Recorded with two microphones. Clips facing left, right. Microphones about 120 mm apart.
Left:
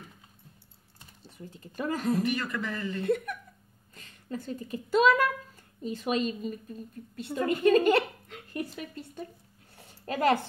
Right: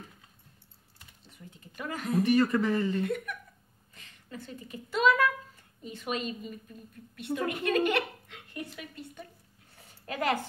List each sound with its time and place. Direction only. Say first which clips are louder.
0.9 s speech: left 6 dB; 35° left (ahead or behind)
2.4 s speech: right 7 dB; 30° right (ahead or behind)
3.0 s a woman's voice: left 3 dB; 35° left (ahead or behind)
9.8 s a sound: left 4 dB; 35° left (ahead or behind)